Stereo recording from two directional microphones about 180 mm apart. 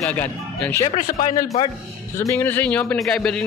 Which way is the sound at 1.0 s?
45° left (ahead or behind).